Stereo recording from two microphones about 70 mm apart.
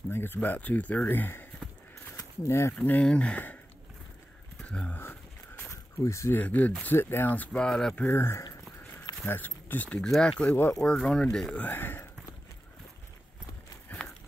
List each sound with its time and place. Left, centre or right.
0.1 s speech: left
2.4 s speech: left
2.7 s speech: centre
4.6 s speech: centre
5.7 s a sound: left
6.3 s speech: left
7.5 s speech: centre
8.0 s speech: left
9.9 s speech: centre
11.6 s speech: left
13.9 s a sound: left